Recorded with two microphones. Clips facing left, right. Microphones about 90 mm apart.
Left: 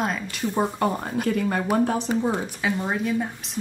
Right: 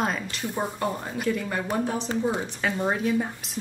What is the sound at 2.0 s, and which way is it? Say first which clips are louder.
Speech: left 2 dB; 15° left (ahead or behind).